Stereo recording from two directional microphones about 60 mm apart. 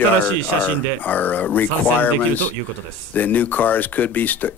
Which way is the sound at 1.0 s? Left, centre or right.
Left.